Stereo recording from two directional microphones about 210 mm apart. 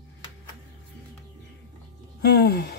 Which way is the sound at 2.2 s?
50° left (ahead or behind).